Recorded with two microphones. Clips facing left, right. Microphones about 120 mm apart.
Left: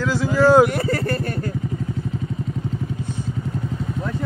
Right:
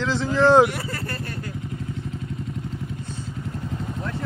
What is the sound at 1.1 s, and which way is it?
Vehicle, 55° left (ahead or behind).